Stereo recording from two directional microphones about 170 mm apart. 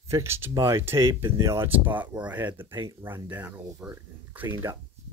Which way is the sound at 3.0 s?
10° right (ahead or behind).